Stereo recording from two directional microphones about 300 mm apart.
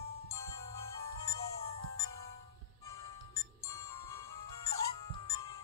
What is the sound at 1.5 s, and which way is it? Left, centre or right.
Music, centre.